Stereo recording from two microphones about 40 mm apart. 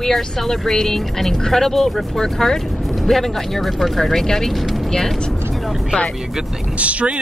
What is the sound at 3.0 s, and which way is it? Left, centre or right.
Music, centre.